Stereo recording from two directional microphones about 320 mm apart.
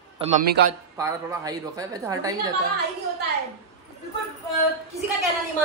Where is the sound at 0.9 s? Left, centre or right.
Centre.